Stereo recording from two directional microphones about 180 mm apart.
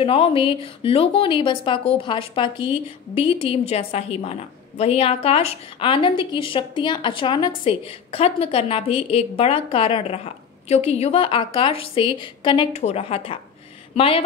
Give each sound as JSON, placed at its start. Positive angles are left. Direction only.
{"t": 0.0, "sound": "a woman's voice", "side_deg": 30}